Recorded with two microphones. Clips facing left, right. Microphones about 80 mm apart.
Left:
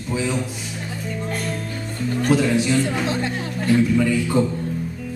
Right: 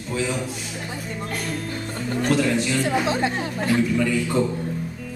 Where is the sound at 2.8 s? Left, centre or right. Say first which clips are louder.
Right 1 dB; centre.